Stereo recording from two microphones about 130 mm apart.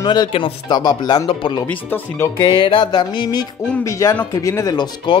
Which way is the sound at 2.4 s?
40° left (ahead or behind).